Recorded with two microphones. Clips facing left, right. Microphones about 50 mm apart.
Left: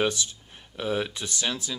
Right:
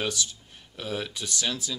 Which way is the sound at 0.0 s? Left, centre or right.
Left.